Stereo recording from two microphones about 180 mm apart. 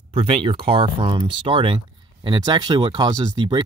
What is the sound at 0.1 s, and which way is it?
Speech, 30° right (ahead or behind).